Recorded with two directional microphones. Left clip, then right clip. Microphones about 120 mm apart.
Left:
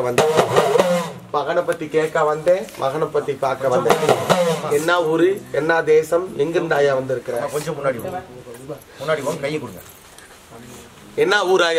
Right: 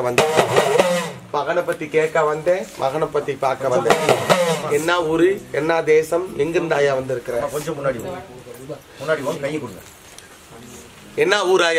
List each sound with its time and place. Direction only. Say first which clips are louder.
0.0 s speech: even; centre (ahead or behind)
7.3 s speech: even; 20° left (ahead or behind)
9.0 s speech: even; 20° left (ahead or behind)
11.1 s speech: even; centre (ahead or behind)